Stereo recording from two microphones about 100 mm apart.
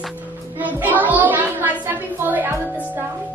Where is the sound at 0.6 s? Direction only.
15° right (ahead or behind).